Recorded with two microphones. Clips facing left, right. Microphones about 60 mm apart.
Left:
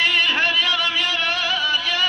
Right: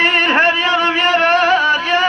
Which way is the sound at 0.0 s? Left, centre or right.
Right.